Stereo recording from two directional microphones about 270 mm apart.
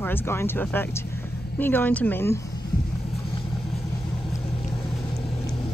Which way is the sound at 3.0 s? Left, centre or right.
Left.